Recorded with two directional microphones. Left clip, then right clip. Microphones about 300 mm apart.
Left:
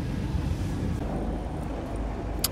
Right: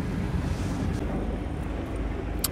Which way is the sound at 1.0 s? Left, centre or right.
Left.